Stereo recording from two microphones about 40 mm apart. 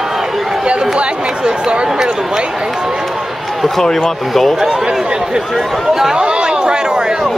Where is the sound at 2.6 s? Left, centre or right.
Centre.